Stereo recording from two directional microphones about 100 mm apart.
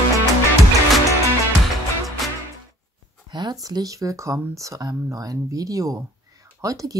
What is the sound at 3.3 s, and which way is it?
Speech, 40° right (ahead or behind).